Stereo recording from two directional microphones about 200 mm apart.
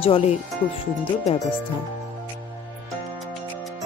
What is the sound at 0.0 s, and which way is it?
Speech, 30° left (ahead or behind).